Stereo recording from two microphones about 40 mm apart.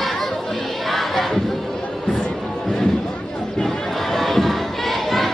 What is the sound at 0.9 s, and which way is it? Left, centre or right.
Crowd, centre.